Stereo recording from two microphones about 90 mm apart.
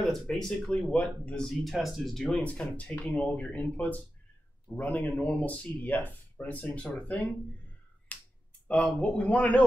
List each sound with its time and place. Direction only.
0.0 s speech: 5° left (ahead or behind)
1.5 s speech: centre (ahead or behind)
8.1 s finger snapping: 15° left (ahead or behind)
8.6 s speech: 15° left (ahead or behind)